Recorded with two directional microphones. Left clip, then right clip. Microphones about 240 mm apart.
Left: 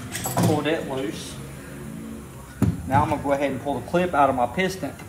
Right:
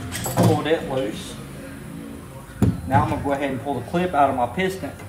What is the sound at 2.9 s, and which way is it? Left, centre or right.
A man's voice, centre.